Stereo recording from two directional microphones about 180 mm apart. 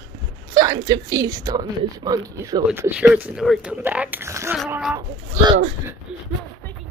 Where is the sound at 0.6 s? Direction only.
20° right (ahead or behind).